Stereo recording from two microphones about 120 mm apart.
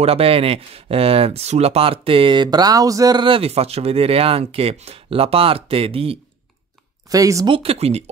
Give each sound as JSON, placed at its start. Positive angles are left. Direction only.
{"t": 0.0, "sound": "speech", "side_deg": -55}
{"t": 3.3, "sound": "speech", "side_deg": -55}
{"t": 7.1, "sound": "speech", "side_deg": -30}
{"t": 7.4, "sound": "speech", "side_deg": -50}